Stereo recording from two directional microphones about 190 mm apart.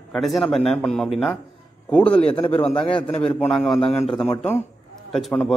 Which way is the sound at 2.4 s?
25° left (ahead or behind).